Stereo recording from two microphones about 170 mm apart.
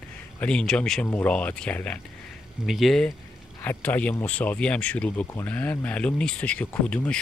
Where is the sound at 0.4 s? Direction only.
5° left (ahead or behind).